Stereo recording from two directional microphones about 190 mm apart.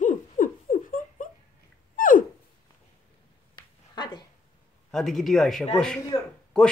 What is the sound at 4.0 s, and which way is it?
Dog, 25° left (ahead or behind).